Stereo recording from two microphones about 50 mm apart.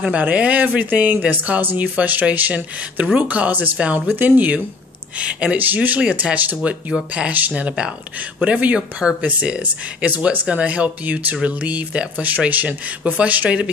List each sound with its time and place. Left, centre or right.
0.2 s speech: right
3.7 s speech: right
4.1 s speech: right
5.2 s speech: right